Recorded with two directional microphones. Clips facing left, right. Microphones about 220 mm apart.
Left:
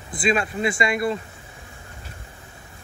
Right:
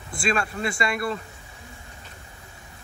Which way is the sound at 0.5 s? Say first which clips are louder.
Left 4 dB; 20° left (ahead or behind).